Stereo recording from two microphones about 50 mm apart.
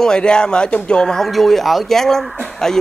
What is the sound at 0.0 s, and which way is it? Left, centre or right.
Speech, centre.